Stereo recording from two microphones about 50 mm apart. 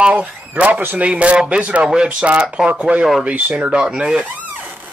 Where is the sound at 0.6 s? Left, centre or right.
Right; by 2.3 s centre.